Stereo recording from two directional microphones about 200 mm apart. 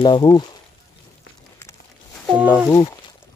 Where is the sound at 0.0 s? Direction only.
20° left (ahead or behind).